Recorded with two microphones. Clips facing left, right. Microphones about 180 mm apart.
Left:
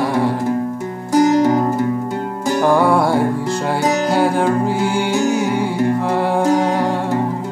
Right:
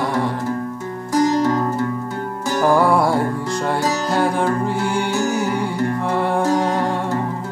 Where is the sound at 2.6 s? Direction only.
Centre (ahead or behind).